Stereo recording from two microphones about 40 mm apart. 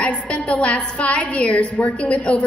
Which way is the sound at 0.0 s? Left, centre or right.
Left.